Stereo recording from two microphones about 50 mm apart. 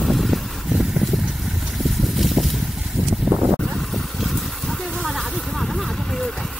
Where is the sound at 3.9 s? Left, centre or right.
Centre.